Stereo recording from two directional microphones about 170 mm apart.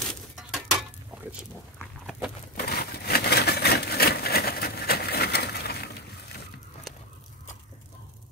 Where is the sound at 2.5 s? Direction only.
70° left (ahead or behind).